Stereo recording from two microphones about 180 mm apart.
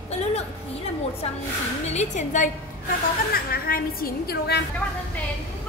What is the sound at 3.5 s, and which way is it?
A woman's voice, 55° left (ahead or behind).